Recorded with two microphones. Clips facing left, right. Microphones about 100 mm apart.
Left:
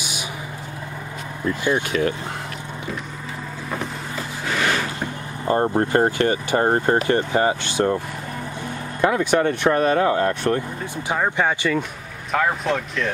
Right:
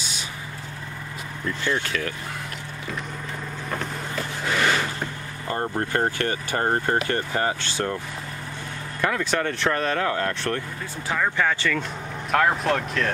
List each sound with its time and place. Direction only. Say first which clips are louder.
1.6 s speech: left 6 dB; 15° left (ahead or behind)
4.5 s vehicle: even; centre (ahead or behind)
5.4 s speech: left 8 dB; 25° left (ahead or behind)
9.0 s speech: left 6 dB; 20° left (ahead or behind)
12.3 s speech: even; centre (ahead or behind)